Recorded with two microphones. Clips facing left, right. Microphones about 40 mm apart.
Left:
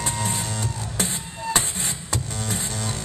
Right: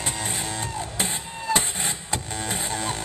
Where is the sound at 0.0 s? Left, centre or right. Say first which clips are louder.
Left 2 dB; right.